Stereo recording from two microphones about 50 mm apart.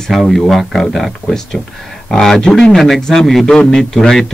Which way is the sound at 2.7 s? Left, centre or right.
Centre.